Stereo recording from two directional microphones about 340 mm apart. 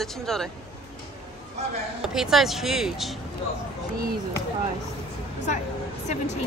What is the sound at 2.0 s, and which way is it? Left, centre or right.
Speech, centre.